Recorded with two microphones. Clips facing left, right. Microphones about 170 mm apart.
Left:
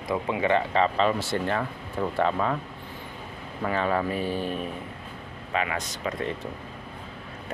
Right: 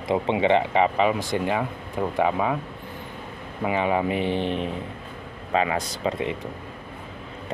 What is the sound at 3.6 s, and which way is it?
Speech, 15° right (ahead or behind).